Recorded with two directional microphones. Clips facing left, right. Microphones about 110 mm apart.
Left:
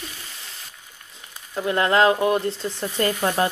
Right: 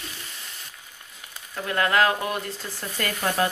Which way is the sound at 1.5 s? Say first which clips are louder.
Left 3 dB; 20° left (ahead or behind).